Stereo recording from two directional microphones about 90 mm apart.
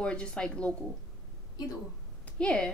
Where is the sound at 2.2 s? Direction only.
10° left (ahead or behind).